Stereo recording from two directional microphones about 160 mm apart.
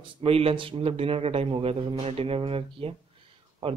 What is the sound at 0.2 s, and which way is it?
Speech, 35° right (ahead or behind).